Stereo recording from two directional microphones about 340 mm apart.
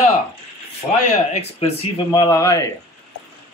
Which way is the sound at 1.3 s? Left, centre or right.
Centre.